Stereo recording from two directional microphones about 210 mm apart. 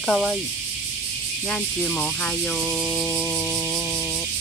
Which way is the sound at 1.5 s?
5° left (ahead or behind).